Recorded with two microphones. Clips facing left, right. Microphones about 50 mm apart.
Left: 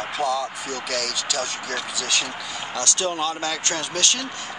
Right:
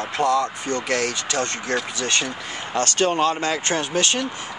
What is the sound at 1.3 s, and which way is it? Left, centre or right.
Speech, right.